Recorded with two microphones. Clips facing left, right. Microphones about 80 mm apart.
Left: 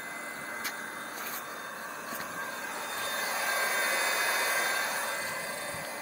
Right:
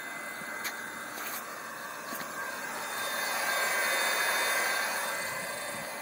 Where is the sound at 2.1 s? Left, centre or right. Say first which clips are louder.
Even; centre.